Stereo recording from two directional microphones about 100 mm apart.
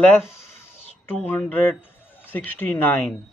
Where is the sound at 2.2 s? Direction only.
20° left (ahead or behind).